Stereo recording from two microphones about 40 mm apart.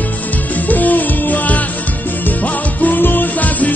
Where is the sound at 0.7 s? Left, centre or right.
Left.